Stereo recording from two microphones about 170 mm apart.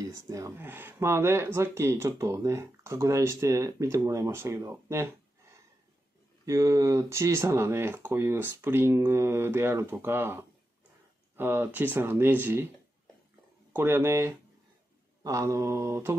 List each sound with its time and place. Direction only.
0.0 s speech: 20° right (ahead or behind)
6.4 s speech: 20° right (ahead or behind)
13.7 s speech: 15° right (ahead or behind)